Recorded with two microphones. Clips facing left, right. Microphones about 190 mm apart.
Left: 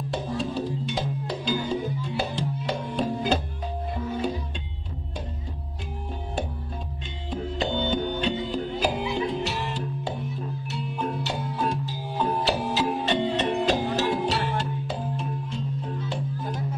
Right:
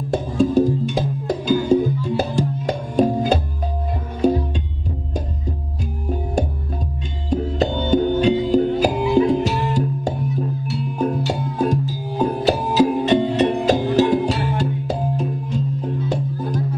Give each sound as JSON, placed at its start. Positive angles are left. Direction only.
{"t": 0.1, "sound": "music", "side_deg": -45}
{"t": 7.2, "sound": "music", "side_deg": -45}